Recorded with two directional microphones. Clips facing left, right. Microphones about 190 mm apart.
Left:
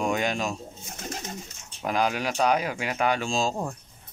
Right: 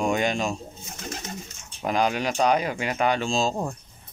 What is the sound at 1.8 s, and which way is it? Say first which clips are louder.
Speech: right 2 dB; 5° left (ahead or behind).